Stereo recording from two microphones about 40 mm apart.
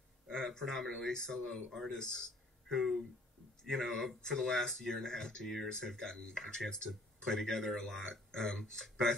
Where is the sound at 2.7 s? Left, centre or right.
Centre.